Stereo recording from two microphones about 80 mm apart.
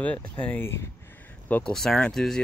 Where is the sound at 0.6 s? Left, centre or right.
Left.